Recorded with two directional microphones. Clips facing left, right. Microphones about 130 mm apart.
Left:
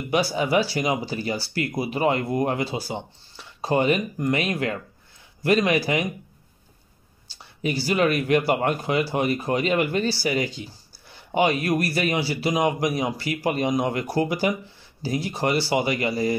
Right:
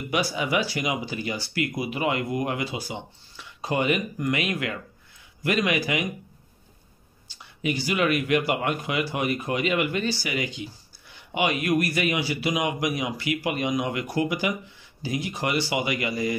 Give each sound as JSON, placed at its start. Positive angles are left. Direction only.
{"t": 0.1, "sound": "speech", "side_deg": 30}
{"t": 7.2, "sound": "speech", "side_deg": 30}